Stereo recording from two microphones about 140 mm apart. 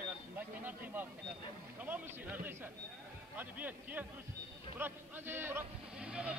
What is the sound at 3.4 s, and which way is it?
A man's voice, 10° right (ahead or behind).